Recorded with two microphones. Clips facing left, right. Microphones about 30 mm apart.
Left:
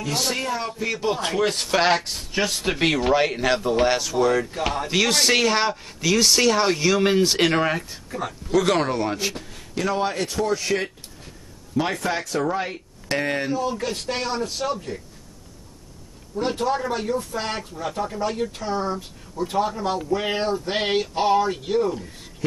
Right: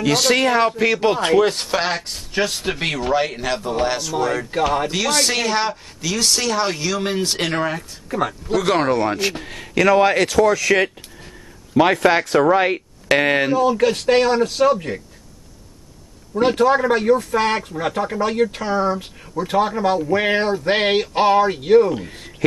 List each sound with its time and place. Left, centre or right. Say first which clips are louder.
0.0 s a man's voice: right 9 dB; right
0.7 s speech: right 9 dB; right
1.0 s speech: right 7 dB; right
1.4 s speech: right 2 dB; centre
2.7 s speech: left 4 dB; centre
8.5 s speech: right 2 dB; centre
8.9 s speech: right 5 dB; right
9.2 s speech: right 5 dB; right
9.5 s a man's voice: right 13 dB; right
16.3 s speech: right 8 dB; right